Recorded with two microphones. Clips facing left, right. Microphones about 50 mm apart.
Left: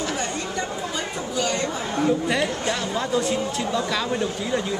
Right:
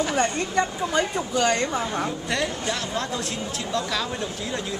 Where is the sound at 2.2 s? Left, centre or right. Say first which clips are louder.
Left 3 dB; centre.